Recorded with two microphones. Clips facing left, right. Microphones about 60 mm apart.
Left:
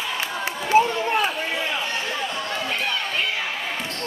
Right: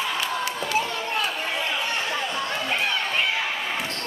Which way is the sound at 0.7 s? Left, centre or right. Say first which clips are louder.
Left 11 dB; left.